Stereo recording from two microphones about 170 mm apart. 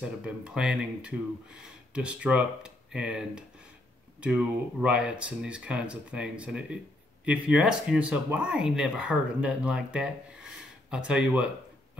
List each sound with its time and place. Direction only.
0.0 s speech: 5° right (ahead or behind)